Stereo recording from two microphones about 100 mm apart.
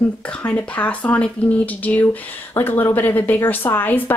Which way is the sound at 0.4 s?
15° left (ahead or behind).